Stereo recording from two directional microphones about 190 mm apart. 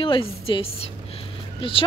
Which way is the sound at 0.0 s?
25° left (ahead or behind).